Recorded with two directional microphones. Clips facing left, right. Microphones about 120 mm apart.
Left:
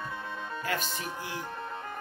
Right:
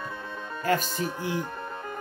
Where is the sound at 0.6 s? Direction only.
40° right (ahead or behind).